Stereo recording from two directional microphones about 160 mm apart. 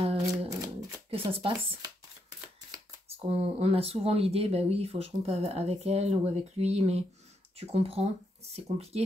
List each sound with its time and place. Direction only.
0.0 s a sound: 35° right (ahead or behind)
1.1 s speech: 35° right (ahead or behind)
3.1 s speech: 40° right (ahead or behind)